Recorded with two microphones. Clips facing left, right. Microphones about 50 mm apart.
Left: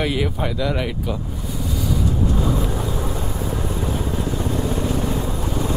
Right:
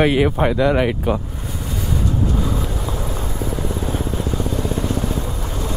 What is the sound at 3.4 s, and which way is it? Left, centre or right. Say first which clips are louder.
Vehicle: right 3 dB; left.